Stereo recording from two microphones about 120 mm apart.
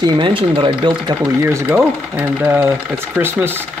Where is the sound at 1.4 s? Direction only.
20° right (ahead or behind).